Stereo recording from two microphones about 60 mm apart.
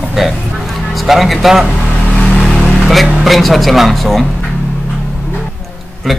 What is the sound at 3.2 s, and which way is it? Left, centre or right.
Speech, centre.